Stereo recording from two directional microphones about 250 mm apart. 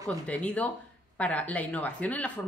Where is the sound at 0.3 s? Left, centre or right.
Centre.